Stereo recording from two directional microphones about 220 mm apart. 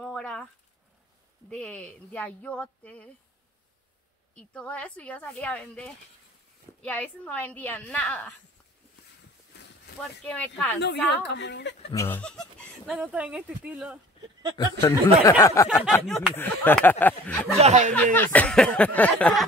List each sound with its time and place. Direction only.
0.0 s a sound: 5° left (ahead or behind)
1.5 s speech: 5° left (ahead or behind)
4.4 s speech: 5° left (ahead or behind)
10.2 s speech: 5° left (ahead or behind)
10.8 s a woman's voice: 50° left (ahead or behind)
11.9 s speech: 10° left (ahead or behind); by 13.9 s 5° right (ahead or behind)
14.6 s speech: 15° left (ahead or behind)
15.8 s speech: centre (ahead or behind)
17.6 s speech: 30° right (ahead or behind)
17.9 s speech: 5° left (ahead or behind)